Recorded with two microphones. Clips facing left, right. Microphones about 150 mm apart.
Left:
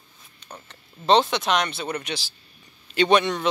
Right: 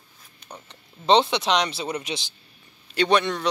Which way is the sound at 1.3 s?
25° right (ahead or behind).